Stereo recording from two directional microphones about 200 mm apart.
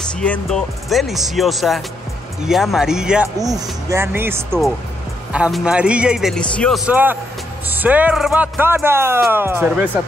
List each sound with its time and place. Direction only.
0.1 s speech: 5° left (ahead or behind)
3.3 s speech: 15° right (ahead or behind)
4.5 s speech: centre (ahead or behind)
6.9 s speech: 10° right (ahead or behind)